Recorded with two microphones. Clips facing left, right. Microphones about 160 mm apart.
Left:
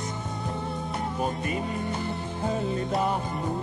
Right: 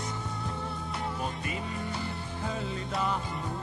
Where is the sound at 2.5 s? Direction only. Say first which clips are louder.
Left 8 dB; 50° left (ahead or behind).